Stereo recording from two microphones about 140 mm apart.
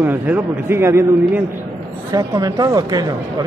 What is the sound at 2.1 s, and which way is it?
Speech, 25° right (ahead or behind).